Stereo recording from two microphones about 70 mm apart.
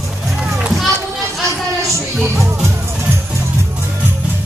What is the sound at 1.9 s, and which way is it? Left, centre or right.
Music, right.